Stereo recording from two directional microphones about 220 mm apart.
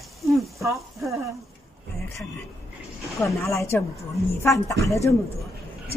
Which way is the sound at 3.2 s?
15° left (ahead or behind).